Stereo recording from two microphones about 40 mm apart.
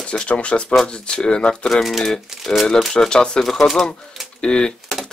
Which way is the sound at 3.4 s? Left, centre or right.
Centre.